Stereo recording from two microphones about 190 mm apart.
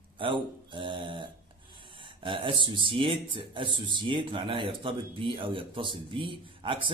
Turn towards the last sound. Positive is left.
turn(degrees=-25)  # may be behind; listen again after turning